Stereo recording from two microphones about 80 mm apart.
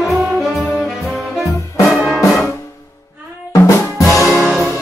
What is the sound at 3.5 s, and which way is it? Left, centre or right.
Music, left.